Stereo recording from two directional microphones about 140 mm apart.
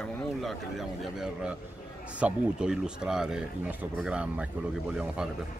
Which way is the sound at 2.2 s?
5° right (ahead or behind).